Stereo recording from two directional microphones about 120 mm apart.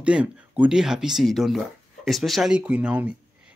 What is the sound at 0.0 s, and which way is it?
Speech, 10° right (ahead or behind).